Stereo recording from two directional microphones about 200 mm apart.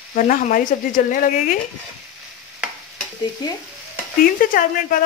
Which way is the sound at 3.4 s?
20° left (ahead or behind).